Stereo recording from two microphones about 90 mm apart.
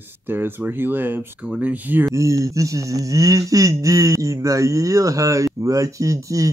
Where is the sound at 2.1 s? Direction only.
35° right (ahead or behind).